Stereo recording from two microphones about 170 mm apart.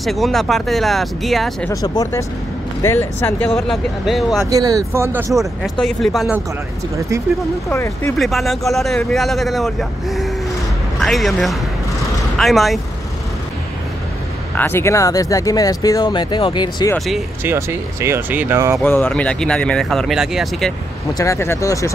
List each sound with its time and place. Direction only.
0.0 s speech: centre (ahead or behind)
1.7 s speech: 20° left (ahead or behind)
3.5 s speech: centre (ahead or behind)
4.5 s speech: 20° right (ahead or behind)
5.6 s speech: centre (ahead or behind)
7.7 s speech: 15° left (ahead or behind)
8.2 s speech: centre (ahead or behind)
14.6 s speech: 15° left (ahead or behind)
17.4 s speech: 15° right (ahead or behind)
18.8 s speech: 10° left (ahead or behind)
21.1 s speech: 20° left (ahead or behind)